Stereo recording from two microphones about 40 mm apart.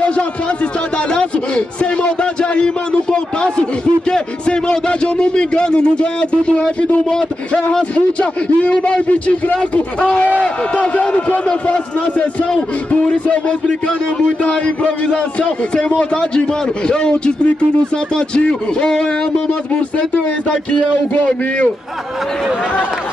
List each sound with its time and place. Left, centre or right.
0.0 s a man's voice: left
2.9 s a sound: left
7.9 s a man's voice: left
16.0 s a man's voice: left